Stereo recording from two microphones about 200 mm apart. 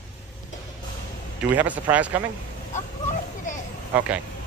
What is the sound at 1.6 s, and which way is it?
Speech, 10° right (ahead or behind).